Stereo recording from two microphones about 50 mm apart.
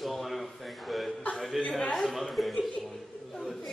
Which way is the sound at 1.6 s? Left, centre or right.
Left.